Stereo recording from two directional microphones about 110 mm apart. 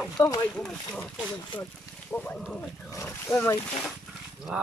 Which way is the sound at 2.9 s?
25° left (ahead or behind).